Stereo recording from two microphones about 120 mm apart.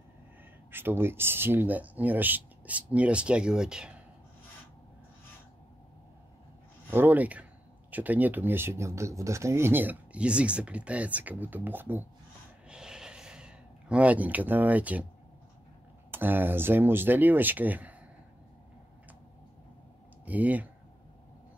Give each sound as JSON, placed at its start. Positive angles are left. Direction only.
{"t": 0.7, "sound": "speech", "side_deg": -20}
{"t": 6.9, "sound": "speech", "side_deg": -15}
{"t": 12.6, "sound": "a sound", "side_deg": -5}
{"t": 16.1, "sound": "speech", "side_deg": -15}
{"t": 20.2, "sound": "speech", "side_deg": -15}